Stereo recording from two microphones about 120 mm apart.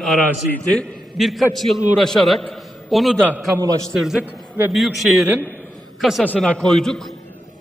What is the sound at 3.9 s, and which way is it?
A man's voice, 5° right (ahead or behind).